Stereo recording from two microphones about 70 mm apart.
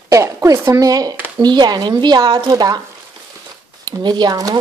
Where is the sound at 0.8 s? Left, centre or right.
Right.